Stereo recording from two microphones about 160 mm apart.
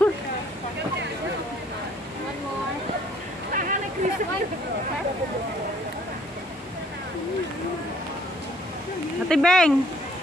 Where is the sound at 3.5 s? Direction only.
55° right (ahead or behind).